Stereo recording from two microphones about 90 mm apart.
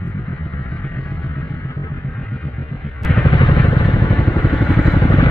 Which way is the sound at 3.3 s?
55° left (ahead or behind).